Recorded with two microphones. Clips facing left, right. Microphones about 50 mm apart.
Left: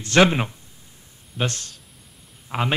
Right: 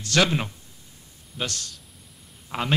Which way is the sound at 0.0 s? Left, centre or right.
Left.